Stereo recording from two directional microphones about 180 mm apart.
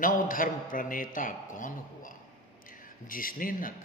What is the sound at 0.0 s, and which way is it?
A man's voice, 50° left (ahead or behind).